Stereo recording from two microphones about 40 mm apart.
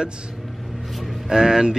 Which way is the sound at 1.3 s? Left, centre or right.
Centre.